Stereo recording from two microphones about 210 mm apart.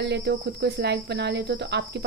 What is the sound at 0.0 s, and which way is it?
Speech, 55° right (ahead or behind).